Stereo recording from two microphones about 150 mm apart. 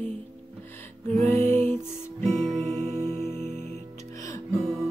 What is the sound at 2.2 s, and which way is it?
Music, 45° right (ahead or behind).